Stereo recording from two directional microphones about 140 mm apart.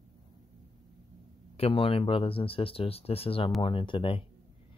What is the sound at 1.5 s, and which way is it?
Speech, 40° left (ahead or behind).